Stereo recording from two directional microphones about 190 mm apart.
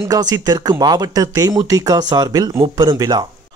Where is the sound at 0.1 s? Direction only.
20° right (ahead or behind).